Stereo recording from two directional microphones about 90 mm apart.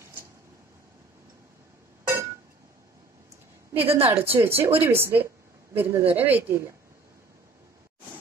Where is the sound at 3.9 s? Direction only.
90° right.